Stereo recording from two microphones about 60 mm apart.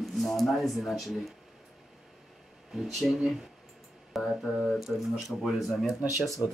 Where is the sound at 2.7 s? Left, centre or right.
Centre.